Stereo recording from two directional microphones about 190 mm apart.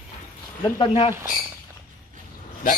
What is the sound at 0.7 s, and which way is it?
Speech, 25° left (ahead or behind).